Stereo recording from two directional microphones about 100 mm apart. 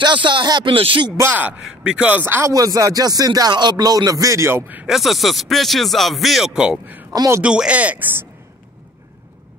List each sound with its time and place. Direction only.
0.0 s speech: 50° right (ahead or behind)
1.6 s speech: 5° right (ahead or behind); by 2.5 s 25° right (ahead or behind)
2.5 s rapping: 35° right (ahead or behind)
4.8 s speech: centre (ahead or behind)